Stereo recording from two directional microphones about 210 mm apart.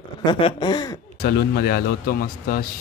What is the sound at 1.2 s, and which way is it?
A man's voice, 45° left (ahead or behind).